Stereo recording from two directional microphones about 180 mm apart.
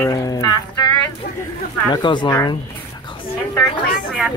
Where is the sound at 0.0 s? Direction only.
20° left (ahead or behind).